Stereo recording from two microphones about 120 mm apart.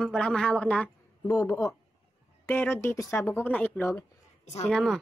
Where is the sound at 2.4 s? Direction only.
20° left (ahead or behind).